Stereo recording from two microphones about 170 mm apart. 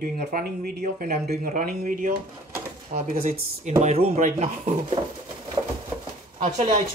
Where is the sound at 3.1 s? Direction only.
60° right (ahead or behind).